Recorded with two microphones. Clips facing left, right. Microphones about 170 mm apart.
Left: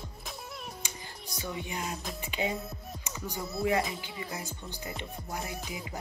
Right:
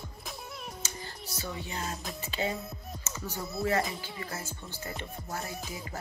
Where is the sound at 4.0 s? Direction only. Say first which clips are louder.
Even; 15° left (ahead or behind).